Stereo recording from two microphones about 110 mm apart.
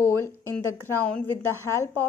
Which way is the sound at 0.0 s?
25° left (ahead or behind).